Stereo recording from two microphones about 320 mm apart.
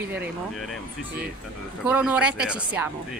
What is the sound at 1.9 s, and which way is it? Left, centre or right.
A woman's voice, centre.